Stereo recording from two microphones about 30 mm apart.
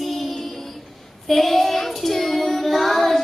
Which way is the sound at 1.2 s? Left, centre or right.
Centre.